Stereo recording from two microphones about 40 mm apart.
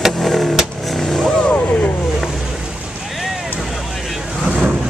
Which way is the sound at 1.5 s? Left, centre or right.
Left.